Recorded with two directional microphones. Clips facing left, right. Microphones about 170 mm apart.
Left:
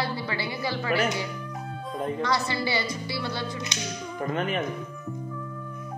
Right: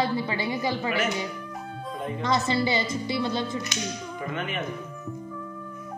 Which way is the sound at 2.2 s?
20° right (ahead or behind).